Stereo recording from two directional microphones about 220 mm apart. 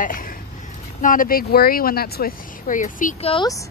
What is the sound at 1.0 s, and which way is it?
A woman's voice, 40° left (ahead or behind).